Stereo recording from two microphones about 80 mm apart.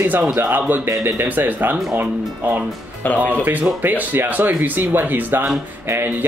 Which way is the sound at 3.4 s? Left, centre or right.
Right.